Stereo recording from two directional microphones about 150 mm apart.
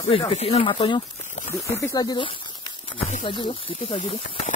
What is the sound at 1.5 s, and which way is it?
Speech, 20° left (ahead or behind).